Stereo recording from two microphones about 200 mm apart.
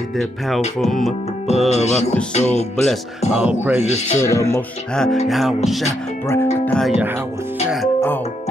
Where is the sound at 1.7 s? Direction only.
35° left (ahead or behind).